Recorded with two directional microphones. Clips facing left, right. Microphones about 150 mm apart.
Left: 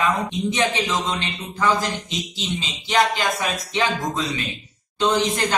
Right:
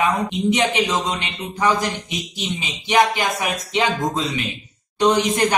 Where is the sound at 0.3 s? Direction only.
20° right (ahead or behind).